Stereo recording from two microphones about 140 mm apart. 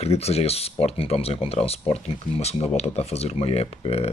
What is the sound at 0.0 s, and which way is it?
Speech, 50° left (ahead or behind).